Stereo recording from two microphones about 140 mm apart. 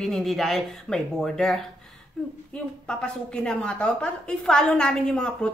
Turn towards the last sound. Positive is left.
turn(degrees=5)  # may be behind; listen again after turning